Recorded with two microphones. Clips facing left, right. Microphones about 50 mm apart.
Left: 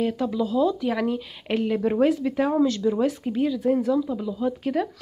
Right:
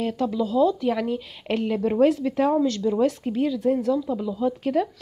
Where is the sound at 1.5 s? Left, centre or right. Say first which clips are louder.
Even; centre.